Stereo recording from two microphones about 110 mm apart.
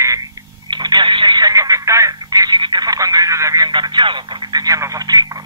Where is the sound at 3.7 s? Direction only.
45° right (ahead or behind).